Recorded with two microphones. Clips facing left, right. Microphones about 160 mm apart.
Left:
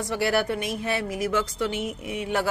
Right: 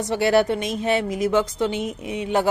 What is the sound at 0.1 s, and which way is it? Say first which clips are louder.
Speech: right 6 dB; 25° right (ahead or behind).